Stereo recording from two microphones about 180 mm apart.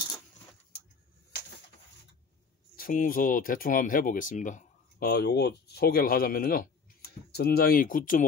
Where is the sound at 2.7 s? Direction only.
50° left (ahead or behind).